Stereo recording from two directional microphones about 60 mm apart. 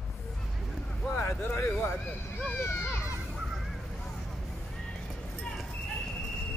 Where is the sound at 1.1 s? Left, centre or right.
Left.